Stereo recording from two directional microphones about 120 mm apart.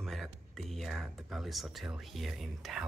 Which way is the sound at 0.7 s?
Centre (ahead or behind).